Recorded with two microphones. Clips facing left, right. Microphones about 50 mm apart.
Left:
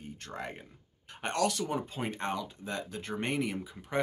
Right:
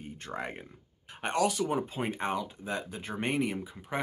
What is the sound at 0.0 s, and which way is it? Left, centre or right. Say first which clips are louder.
Speech: right 3 dB; centre.